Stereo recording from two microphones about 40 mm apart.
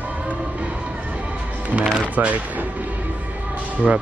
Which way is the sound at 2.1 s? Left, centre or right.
Right.